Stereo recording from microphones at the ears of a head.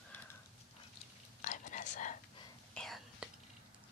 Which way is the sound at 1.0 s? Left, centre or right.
Left.